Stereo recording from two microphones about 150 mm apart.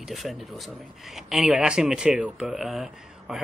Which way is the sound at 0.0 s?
Centre (ahead or behind).